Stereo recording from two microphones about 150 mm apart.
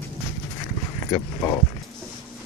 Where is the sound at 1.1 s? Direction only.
25° left (ahead or behind).